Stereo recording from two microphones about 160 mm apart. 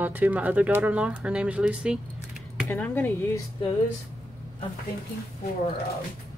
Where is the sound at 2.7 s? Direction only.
10° left (ahead or behind).